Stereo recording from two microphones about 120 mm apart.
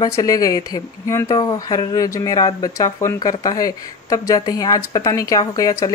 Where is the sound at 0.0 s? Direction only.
30° left (ahead or behind).